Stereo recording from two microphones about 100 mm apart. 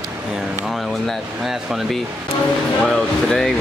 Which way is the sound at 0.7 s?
5° right (ahead or behind).